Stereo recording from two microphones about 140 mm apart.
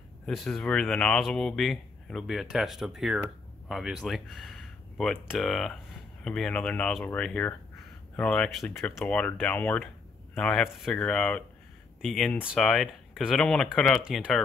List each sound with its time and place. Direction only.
0.3 s speech: centre (ahead or behind)